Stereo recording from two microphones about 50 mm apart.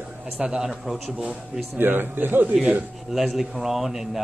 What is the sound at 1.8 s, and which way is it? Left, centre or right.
Speech, right.